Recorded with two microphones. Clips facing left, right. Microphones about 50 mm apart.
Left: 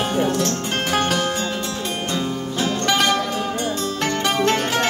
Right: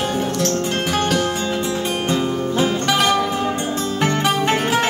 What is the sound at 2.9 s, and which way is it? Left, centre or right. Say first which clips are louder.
Music: left 1 dB; centre.